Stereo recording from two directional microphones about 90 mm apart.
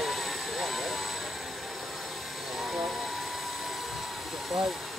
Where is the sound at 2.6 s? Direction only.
Centre (ahead or behind).